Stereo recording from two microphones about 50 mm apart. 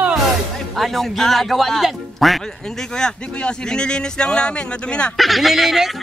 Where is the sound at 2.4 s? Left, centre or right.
Centre.